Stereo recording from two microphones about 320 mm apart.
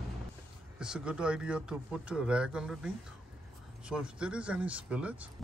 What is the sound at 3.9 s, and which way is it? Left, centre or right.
Speech, centre.